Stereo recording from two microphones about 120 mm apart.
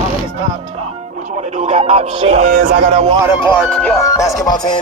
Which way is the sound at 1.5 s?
60° right (ahead or behind).